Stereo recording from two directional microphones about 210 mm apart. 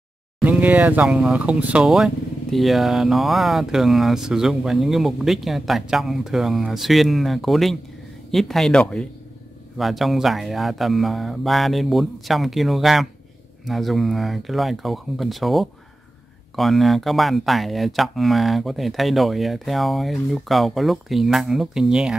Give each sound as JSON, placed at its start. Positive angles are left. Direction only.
{"t": 0.4, "sound": "speech", "side_deg": -5}